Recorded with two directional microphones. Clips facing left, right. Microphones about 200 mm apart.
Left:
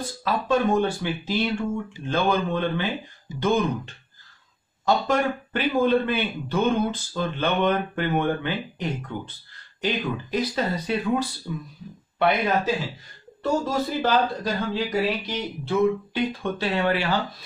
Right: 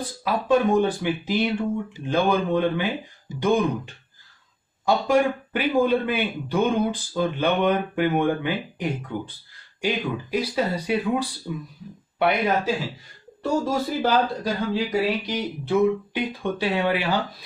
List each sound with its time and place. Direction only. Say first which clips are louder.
0.2 s a man's voice: right 2 dB; 15° right (ahead or behind)